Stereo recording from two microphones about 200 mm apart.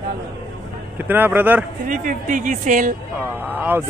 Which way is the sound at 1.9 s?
40° right (ahead or behind).